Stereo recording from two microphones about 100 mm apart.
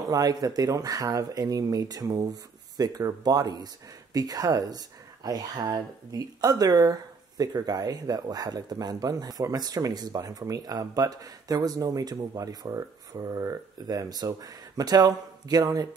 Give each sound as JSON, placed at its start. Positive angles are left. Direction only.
{"t": 0.1, "sound": "speech", "side_deg": -40}